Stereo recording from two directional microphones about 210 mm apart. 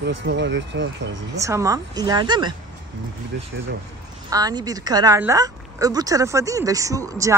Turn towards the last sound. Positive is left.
turn(degrees=-15)  # may be behind; listen again after turning